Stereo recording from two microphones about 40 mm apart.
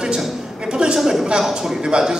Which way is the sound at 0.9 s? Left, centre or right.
Centre.